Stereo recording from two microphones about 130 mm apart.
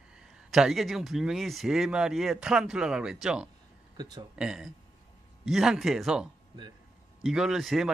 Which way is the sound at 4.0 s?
30° right (ahead or behind).